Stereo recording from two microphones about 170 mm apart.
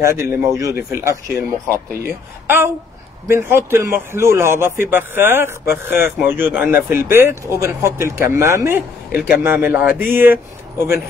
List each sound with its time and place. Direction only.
0.0 s speech: 15° right (ahead or behind)